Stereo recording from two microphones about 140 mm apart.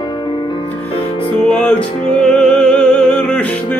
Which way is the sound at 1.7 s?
5° left (ahead or behind).